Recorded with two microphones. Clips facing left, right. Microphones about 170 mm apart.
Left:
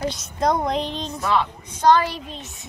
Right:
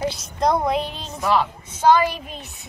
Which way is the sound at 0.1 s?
Centre (ahead or behind).